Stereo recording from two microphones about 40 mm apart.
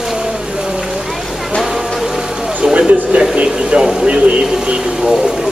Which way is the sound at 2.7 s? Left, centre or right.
Right.